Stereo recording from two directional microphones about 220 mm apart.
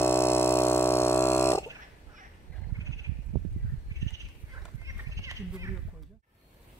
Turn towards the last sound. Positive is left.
turn(degrees=-15)  # may be behind; listen again after turning